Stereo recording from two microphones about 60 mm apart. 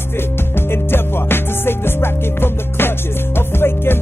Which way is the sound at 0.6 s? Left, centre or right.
Left.